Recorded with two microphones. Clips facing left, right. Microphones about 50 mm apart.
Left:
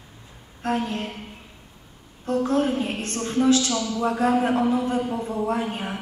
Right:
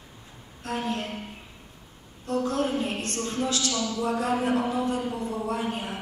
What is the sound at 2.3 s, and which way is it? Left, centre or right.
A woman's voice, left.